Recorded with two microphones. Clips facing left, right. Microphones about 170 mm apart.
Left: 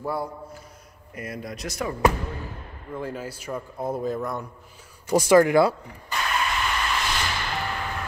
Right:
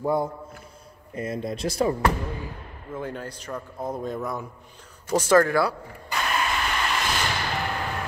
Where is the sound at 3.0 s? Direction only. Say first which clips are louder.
Left 1 dB; 5° left (ahead or behind).